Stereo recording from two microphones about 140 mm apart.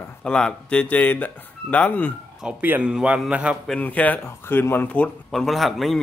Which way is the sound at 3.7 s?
10° left (ahead or behind).